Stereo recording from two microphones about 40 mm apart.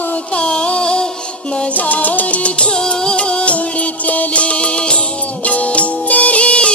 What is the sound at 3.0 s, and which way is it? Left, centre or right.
Music, centre.